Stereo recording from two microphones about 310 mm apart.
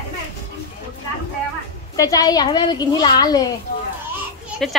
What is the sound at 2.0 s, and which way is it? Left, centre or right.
A woman's voice, centre.